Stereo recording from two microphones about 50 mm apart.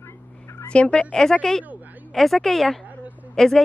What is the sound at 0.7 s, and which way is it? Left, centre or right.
Speech, left.